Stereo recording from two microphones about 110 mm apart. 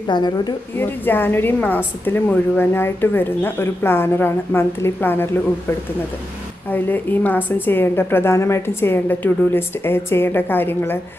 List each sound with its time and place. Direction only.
0.0 s speech: 40° left (ahead or behind)
0.7 s a woman's voice: 20° left (ahead or behind)
6.7 s a woman's voice: 15° left (ahead or behind)